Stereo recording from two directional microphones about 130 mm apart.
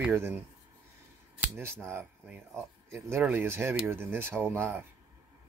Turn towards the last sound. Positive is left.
turn(degrees=-15)  # may be behind; listen again after turning